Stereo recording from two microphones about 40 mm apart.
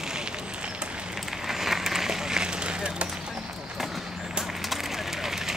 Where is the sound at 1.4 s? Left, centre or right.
Centre; by 3.1 s right.